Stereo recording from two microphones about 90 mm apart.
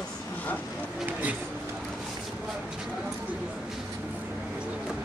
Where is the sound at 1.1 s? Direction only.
20° right (ahead or behind).